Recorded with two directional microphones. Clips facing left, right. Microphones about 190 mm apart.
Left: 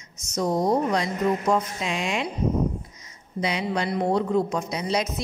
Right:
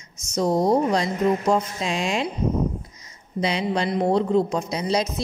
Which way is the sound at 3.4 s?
30° right (ahead or behind).